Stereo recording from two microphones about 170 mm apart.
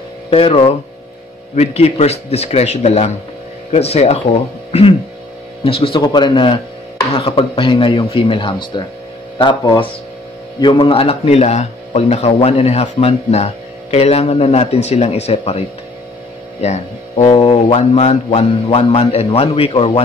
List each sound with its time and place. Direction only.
0.3 s a man's voice: 35° left (ahead or behind)
5.6 s a man's voice: 35° left (ahead or behind)
17.2 s a man's voice: 30° left (ahead or behind)